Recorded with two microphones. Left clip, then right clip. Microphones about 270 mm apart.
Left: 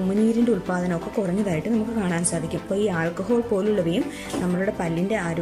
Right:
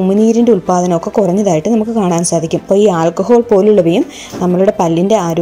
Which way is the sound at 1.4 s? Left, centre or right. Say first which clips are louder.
Right 13 dB; centre.